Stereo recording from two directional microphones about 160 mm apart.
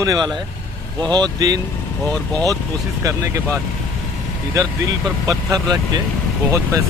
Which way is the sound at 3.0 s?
20° right (ahead or behind).